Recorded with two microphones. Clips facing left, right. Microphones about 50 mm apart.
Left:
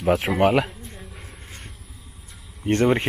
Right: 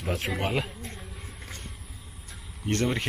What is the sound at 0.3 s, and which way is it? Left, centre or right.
Speech, left.